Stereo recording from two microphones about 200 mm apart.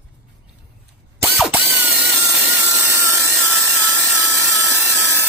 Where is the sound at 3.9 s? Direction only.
15° left (ahead or behind).